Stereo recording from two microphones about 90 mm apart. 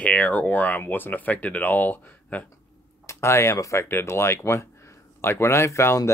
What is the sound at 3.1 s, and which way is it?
Speech, 30° left (ahead or behind).